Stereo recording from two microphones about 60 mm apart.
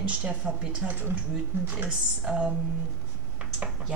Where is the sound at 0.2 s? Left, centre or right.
Centre.